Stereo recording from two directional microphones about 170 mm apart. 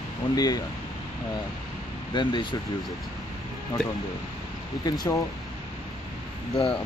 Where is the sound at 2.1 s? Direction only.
25° left (ahead or behind).